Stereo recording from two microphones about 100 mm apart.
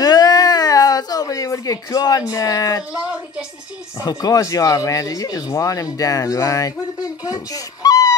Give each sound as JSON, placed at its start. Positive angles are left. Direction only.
{"t": 0.0, "sound": "a sound", "side_deg": 40}
{"t": 2.9, "sound": "a woman's voice", "side_deg": -10}
{"t": 4.0, "sound": "speech", "side_deg": 40}